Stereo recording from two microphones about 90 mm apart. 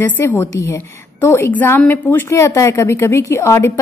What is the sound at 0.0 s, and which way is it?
A woman's voice, 25° left (ahead or behind).